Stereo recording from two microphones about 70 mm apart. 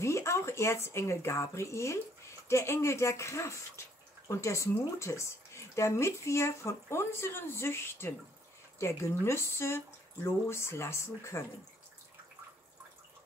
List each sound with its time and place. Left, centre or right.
0.0 s speech: left